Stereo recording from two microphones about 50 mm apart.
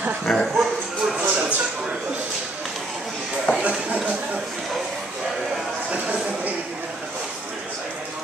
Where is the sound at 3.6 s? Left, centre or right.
Right.